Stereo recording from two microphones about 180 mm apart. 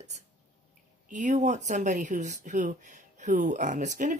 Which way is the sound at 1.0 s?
45° right (ahead or behind).